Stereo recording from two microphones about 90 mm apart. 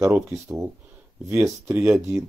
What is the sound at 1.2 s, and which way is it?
Speech, 25° right (ahead or behind).